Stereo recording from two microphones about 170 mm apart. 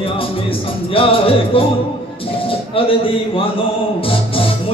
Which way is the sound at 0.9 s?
30° left (ahead or behind).